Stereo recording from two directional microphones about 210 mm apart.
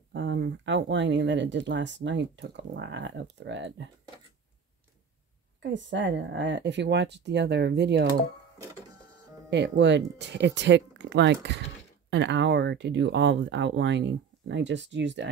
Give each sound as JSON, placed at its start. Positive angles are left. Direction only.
{"t": 0.1, "sound": "speech", "side_deg": -55}
{"t": 5.6, "sound": "speech", "side_deg": -60}
{"t": 9.5, "sound": "speech", "side_deg": -55}